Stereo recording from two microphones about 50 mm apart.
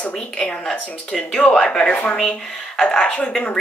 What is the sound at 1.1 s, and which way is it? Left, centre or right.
Speech, centre.